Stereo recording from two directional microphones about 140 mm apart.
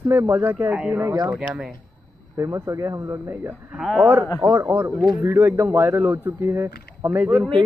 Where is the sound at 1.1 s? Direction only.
30° right (ahead or behind).